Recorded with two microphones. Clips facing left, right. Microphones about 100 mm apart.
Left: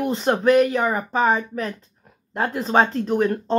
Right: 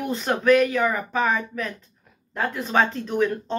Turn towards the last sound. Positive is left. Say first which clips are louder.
# left 3 dB
turn(degrees=40)  # may be behind; listen again after turning